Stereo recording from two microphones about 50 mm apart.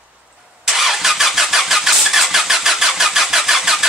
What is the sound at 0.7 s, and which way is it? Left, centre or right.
Vehicle, centre.